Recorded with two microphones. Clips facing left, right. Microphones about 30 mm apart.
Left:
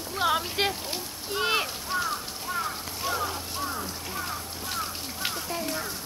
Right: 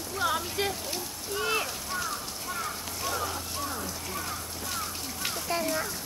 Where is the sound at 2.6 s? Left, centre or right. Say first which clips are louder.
Left 1 dB; centre.